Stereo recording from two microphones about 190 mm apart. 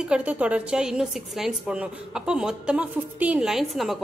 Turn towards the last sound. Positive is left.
turn(degrees=0)  # may be behind; listen again after turning